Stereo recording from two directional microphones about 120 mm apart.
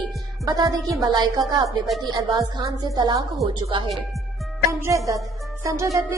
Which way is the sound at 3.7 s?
45° right (ahead or behind).